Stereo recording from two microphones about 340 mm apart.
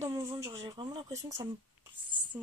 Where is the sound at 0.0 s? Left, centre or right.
Centre.